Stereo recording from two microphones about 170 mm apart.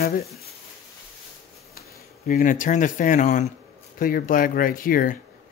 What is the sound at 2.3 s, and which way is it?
Speech, 50° left (ahead or behind).